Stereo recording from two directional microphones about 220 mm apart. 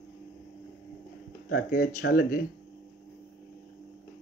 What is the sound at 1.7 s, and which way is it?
Speech, 35° left (ahead or behind).